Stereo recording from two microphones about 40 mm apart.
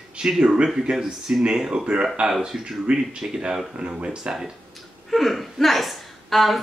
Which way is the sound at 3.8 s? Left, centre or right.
Right.